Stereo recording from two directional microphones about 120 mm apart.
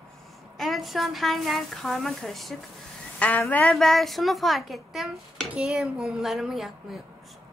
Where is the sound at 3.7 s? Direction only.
Centre (ahead or behind).